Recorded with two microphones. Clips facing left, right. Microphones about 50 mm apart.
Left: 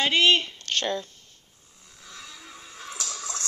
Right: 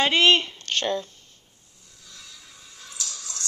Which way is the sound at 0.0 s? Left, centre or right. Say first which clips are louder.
Right 2 dB; centre.